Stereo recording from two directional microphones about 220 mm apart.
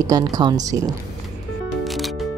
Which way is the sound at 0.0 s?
15° right (ahead or behind).